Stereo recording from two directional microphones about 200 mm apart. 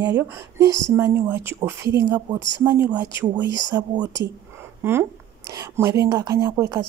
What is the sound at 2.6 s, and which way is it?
A woman's voice, 15° right (ahead or behind).